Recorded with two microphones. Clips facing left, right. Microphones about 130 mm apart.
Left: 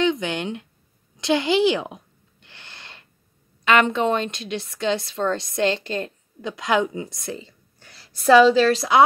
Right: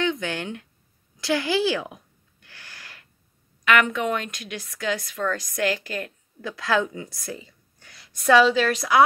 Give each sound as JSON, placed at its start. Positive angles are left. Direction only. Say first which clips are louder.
{"t": 0.0, "sound": "a woman's voice", "louder": "left 4 dB", "side_deg": 20}
{"t": 2.4, "sound": "gasp", "louder": "left 1 dB", "side_deg": 20}
{"t": 3.6, "sound": "a woman's voice", "louder": "left 3 dB", "side_deg": 25}